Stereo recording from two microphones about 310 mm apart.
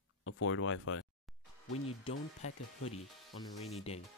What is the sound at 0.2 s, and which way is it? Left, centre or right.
Speech, left.